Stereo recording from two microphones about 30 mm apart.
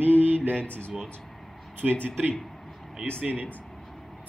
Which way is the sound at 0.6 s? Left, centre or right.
Left.